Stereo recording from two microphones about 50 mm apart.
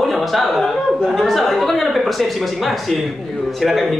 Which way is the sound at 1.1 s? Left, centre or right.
Centre.